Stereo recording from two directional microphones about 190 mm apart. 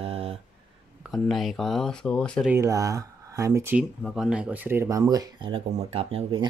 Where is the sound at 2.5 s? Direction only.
15° right (ahead or behind).